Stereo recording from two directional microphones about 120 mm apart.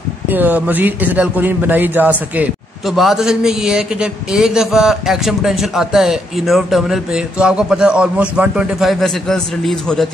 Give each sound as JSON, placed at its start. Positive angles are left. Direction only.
{"t": 0.3, "sound": "a man's voice", "side_deg": -15}
{"t": 2.9, "sound": "speech", "side_deg": 0}